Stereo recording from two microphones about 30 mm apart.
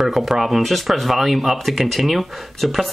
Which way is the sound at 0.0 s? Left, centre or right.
Centre.